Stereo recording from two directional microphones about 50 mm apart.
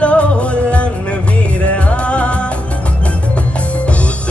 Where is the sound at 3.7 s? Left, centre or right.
Left.